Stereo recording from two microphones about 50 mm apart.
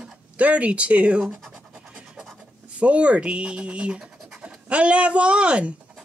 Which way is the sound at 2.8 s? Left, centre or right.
Right.